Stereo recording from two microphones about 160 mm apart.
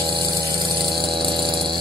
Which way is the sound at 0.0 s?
30° right (ahead or behind).